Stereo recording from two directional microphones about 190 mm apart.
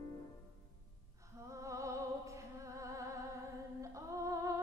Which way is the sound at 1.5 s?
15° right (ahead or behind).